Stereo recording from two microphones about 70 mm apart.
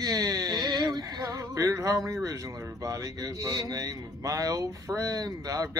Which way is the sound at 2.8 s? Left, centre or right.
Right.